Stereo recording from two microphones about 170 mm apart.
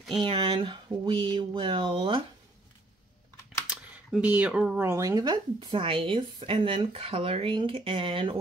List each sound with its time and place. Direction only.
0.2 s speech: 30° right (ahead or behind)
4.1 s speech: 10° right (ahead or behind); by 8.4 s 30° right (ahead or behind)